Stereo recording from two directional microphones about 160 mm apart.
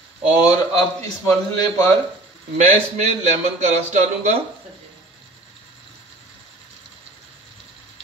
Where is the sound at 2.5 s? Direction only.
45° right (ahead or behind).